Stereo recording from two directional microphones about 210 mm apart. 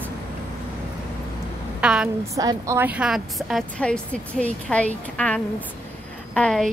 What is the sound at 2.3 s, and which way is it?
Speech, 15° right (ahead or behind).